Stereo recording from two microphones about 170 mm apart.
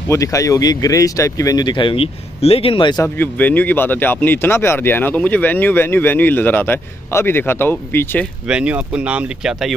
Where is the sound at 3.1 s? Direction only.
10° left (ahead or behind).